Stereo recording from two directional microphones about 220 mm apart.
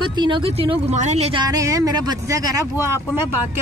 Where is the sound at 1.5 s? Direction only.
15° right (ahead or behind).